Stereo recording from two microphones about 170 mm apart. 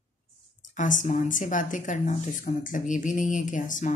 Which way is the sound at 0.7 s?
50° left (ahead or behind).